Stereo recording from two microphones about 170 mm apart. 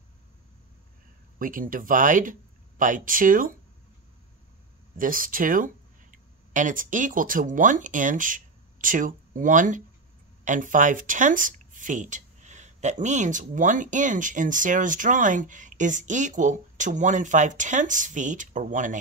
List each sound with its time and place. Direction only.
1.4 s speech: 55° right (ahead or behind)
4.9 s speech: 55° right (ahead or behind)